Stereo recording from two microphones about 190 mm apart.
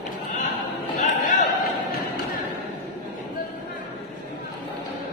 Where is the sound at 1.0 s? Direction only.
40° left (ahead or behind).